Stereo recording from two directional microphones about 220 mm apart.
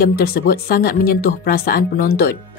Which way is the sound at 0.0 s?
45° left (ahead or behind).